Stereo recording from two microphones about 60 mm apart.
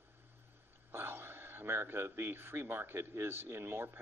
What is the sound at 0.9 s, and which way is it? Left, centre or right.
A man's voice, right.